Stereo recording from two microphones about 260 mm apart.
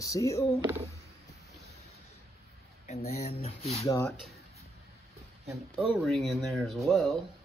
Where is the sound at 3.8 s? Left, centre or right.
Centre.